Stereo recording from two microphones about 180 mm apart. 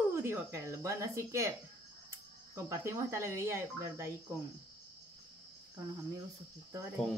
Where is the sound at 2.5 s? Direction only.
15° right (ahead or behind).